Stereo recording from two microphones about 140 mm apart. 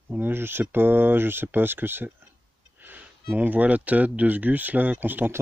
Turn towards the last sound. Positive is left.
turn(degrees=-15)  # may be behind; listen again after turning